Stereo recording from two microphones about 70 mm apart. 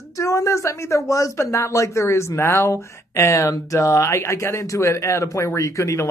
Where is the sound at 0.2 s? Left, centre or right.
Left.